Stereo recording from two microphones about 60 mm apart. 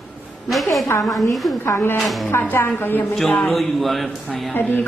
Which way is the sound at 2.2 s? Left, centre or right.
Left.